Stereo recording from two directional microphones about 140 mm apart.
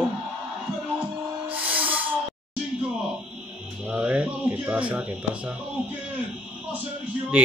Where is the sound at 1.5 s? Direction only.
10° right (ahead or behind).